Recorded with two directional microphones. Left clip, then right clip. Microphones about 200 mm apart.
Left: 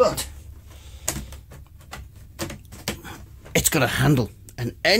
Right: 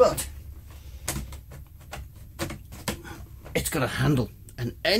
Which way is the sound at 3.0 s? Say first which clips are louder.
Left 3 dB; 45° left (ahead or behind).